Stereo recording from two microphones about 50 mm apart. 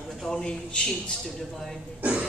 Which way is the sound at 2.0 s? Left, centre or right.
Right.